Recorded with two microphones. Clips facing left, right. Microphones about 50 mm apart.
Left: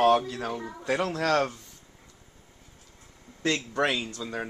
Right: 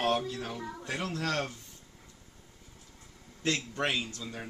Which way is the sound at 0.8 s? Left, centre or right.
Left.